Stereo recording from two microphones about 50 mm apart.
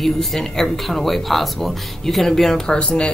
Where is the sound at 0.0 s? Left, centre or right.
Centre.